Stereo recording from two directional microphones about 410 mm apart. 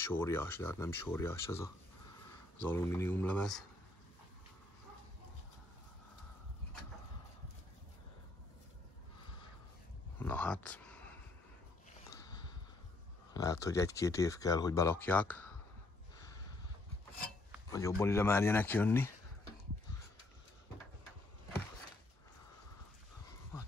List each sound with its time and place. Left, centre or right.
0.0 s speech: centre
10.1 s a sound: centre
13.3 s speech: centre
17.6 s speech: centre